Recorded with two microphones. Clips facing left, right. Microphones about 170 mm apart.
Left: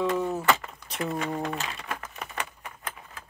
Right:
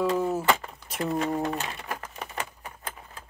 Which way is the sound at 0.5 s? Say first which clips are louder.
Even; 20° right (ahead or behind).